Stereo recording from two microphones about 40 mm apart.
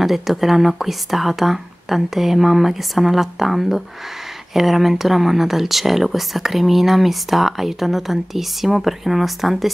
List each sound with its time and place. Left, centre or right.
0.0 s speech: centre